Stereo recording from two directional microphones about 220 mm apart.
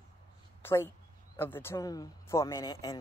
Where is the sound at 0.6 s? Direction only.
10° left (ahead or behind).